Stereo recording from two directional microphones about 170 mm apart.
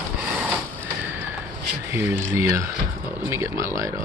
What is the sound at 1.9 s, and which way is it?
Speech, 15° right (ahead or behind).